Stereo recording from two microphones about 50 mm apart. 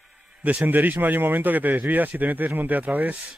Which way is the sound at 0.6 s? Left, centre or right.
Right.